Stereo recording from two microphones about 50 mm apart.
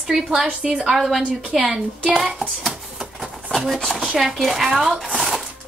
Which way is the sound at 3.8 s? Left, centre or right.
Centre.